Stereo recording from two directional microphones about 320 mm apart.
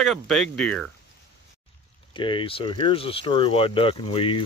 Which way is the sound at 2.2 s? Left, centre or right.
Centre.